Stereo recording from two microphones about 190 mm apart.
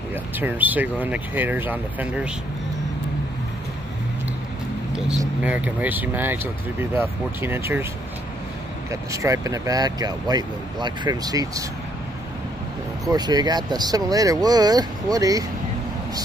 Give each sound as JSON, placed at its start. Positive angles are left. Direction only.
{"t": 0.1, "sound": "speech", "side_deg": -10}
{"t": 5.2, "sound": "speech", "side_deg": -10}
{"t": 9.1, "sound": "speech", "side_deg": -15}
{"t": 13.1, "sound": "speech", "side_deg": -20}